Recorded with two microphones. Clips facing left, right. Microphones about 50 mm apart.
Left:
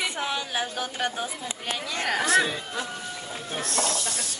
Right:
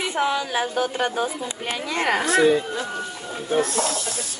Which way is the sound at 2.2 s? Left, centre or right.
Centre.